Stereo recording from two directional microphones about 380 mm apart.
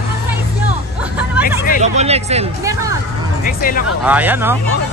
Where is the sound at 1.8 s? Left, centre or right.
Centre.